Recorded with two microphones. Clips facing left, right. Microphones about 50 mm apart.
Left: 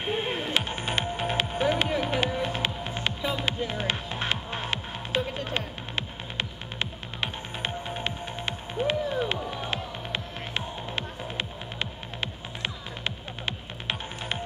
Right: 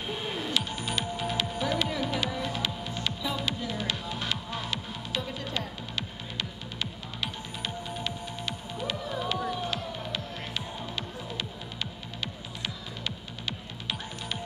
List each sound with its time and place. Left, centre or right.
0.0 s music: left